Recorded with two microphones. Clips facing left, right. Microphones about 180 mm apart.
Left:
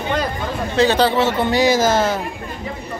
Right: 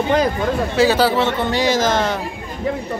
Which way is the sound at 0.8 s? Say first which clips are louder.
Left 1 dB; 5° right (ahead or behind).